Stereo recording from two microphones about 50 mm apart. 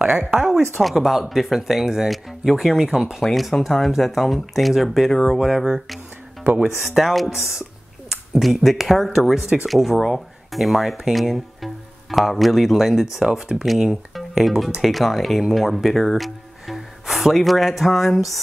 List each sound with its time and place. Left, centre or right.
0.0 s speech: right
0.8 s speech: centre
3.2 s speech: centre
6.8 s speech: centre